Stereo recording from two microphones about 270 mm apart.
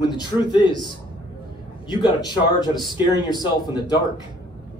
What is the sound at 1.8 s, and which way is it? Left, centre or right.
A man's voice, centre.